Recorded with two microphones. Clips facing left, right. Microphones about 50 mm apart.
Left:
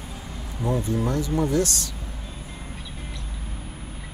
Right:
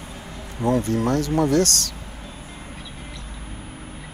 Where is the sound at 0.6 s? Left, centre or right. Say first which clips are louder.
Right 4 dB; right.